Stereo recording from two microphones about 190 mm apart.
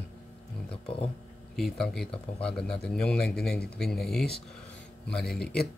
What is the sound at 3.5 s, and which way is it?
Speech, 55° left (ahead or behind).